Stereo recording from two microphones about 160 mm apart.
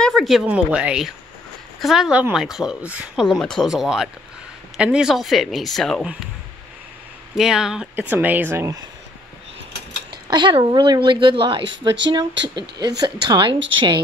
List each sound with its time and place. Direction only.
0.0 s speech: centre (ahead or behind)
7.3 s speech: 5° right (ahead or behind)
10.3 s speech: 30° right (ahead or behind)